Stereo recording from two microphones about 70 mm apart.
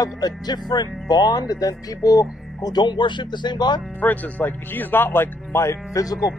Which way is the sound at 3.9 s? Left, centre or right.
Left.